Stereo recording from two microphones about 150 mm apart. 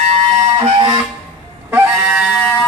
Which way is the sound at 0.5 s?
35° right (ahead or behind).